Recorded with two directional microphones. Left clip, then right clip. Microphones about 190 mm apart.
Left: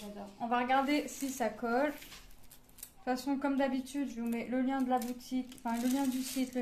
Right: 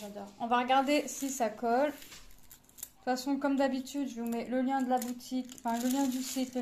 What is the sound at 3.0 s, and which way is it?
Speech, 15° right (ahead or behind).